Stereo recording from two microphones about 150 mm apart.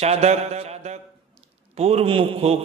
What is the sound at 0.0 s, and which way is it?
Mantra, 45° right (ahead or behind).